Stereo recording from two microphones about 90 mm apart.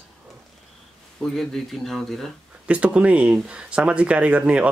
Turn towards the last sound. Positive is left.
turn(degrees=-15)  # may be behind; listen again after turning